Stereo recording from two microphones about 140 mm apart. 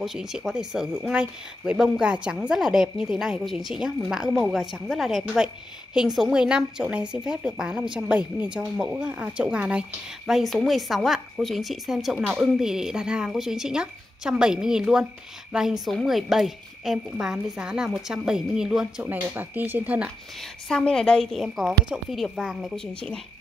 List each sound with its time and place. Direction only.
0.0 s a woman's voice: centre (ahead or behind)
20.6 s a woman's voice: 5° left (ahead or behind)